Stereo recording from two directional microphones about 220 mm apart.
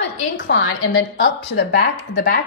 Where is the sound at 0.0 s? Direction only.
60° left (ahead or behind).